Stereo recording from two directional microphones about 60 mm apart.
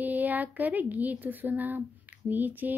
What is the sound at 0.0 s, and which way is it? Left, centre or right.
Speech, right.